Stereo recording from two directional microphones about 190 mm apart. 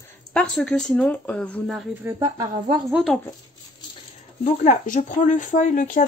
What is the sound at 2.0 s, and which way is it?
Speech, 25° right (ahead or behind).